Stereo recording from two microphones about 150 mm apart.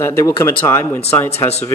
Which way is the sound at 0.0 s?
20° left (ahead or behind).